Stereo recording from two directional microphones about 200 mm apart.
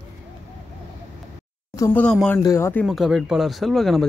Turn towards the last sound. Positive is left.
turn(degrees=0)  # may be behind; listen again after turning